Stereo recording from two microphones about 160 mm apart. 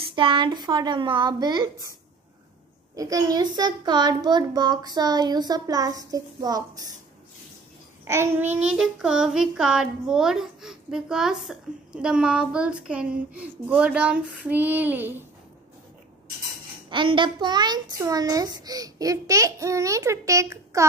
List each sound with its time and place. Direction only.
0.1 s a child's voice: 30° right (ahead or behind)
3.0 s a child's voice: 25° right (ahead or behind)
8.0 s child singing: 15° right (ahead or behind)
16.9 s a child's voice: 30° right (ahead or behind)